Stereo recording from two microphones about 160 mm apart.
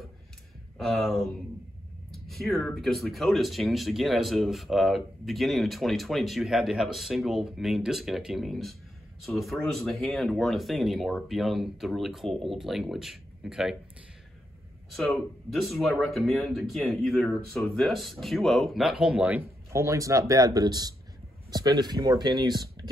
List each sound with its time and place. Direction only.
0.7 s speech: centre (ahead or behind)
14.9 s speech: centre (ahead or behind); by 22.8 s 25° right (ahead or behind)